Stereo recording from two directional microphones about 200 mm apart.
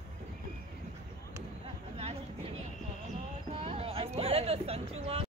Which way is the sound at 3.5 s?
30° right (ahead or behind).